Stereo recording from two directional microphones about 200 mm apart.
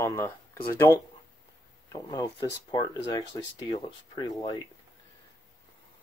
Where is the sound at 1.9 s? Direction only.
20° left (ahead or behind).